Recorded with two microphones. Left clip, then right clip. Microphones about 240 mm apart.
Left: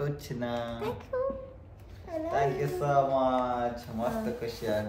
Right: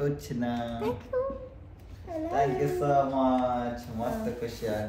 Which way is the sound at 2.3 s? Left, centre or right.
Centre.